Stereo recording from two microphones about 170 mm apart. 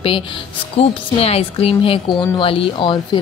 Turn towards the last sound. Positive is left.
turn(degrees=30)  # may be behind; listen again after turning